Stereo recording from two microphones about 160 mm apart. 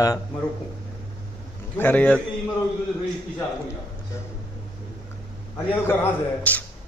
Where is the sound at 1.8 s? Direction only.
10° left (ahead or behind).